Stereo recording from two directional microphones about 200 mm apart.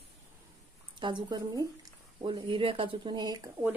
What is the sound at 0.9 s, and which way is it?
Speech, 25° right (ahead or behind).